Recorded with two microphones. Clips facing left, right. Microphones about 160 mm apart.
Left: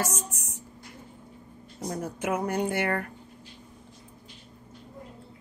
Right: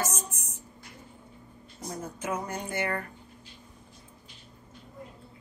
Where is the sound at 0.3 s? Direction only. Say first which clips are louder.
Left 3 dB; 75° left (ahead or behind).